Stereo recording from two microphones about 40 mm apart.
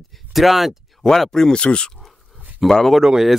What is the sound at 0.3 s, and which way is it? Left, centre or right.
Speech, centre.